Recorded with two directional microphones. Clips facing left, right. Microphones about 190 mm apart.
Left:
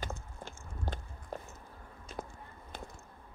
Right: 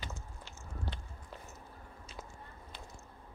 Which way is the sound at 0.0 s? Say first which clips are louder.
Left 5 dB; 50° left (ahead or behind).